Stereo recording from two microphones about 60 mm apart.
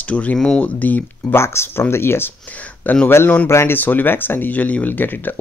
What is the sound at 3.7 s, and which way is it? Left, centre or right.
Speech, left.